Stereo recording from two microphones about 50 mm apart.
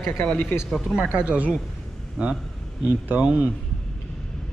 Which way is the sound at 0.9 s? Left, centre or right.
Centre.